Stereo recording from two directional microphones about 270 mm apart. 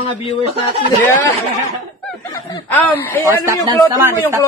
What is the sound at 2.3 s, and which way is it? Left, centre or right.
Speech, centre.